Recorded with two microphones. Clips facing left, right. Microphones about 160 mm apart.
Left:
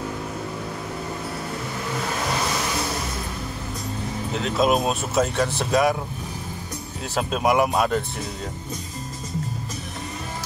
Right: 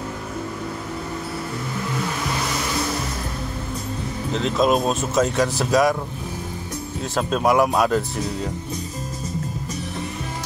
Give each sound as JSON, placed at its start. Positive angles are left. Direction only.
{"t": 4.3, "sound": "speech", "side_deg": 5}
{"t": 7.2, "sound": "speech", "side_deg": 5}